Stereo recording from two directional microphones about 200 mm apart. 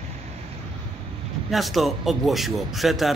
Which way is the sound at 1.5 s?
Centre (ahead or behind).